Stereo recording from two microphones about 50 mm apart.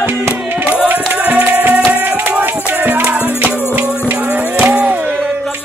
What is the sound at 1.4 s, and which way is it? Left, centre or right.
Music, right.